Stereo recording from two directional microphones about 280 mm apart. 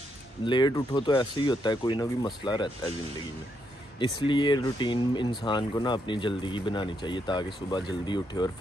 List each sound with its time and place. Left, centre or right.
0.5 s speech: centre
4.0 s speech: centre